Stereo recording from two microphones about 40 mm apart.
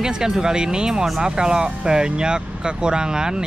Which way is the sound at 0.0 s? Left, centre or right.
Centre.